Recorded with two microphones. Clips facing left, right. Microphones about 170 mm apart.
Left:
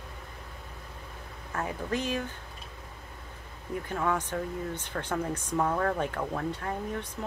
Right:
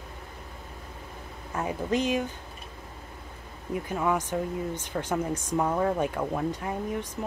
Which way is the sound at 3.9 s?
10° right (ahead or behind).